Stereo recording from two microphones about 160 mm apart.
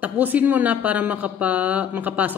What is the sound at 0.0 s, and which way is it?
A woman's voice, 10° right (ahead or behind).